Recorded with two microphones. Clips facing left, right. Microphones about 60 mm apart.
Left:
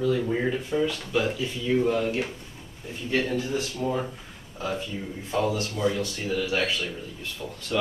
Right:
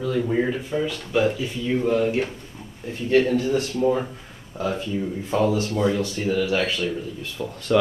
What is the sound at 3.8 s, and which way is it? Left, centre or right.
Speech, right.